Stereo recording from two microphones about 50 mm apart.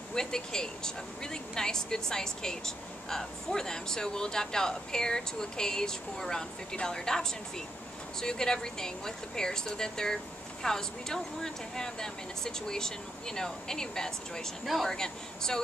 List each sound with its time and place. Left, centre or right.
0.1 s speech: centre
14.6 s speech: centre